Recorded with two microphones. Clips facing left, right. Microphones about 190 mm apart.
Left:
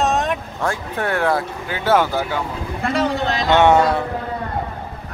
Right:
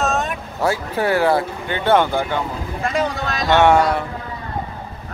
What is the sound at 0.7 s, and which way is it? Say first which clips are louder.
Speech: right 3 dB; 5° right (ahead or behind).